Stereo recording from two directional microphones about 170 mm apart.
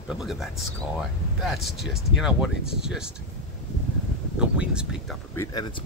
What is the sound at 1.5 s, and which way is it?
Speech, centre (ahead or behind).